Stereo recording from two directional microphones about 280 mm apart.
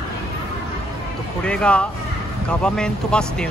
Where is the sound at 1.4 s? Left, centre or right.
Centre.